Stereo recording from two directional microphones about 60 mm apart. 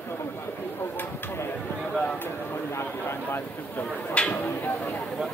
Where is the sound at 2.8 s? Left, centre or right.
Left.